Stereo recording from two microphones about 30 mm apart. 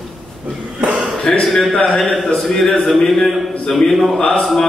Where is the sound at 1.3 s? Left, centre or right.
Left.